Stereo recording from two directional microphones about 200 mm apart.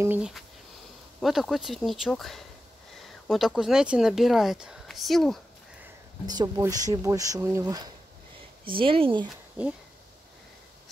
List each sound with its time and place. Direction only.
0.0 s speech: 5° right (ahead or behind)
6.2 s speech: 20° right (ahead or behind)
8.6 s speech: 25° right (ahead or behind)